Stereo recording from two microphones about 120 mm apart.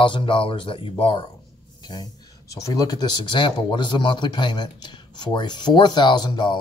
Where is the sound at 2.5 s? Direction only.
30° left (ahead or behind).